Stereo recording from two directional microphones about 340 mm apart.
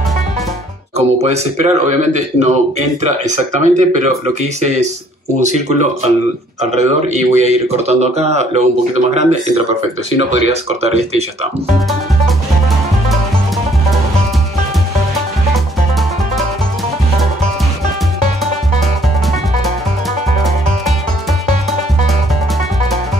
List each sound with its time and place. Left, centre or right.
0.9 s a man's voice: centre